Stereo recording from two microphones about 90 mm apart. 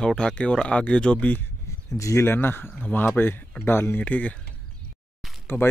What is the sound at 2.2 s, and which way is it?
Speech, 25° left (ahead or behind).